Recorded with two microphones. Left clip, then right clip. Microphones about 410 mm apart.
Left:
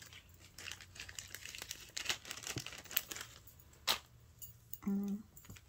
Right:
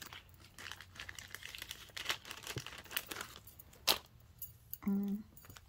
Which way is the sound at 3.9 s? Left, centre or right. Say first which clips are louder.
Right 3 dB; right.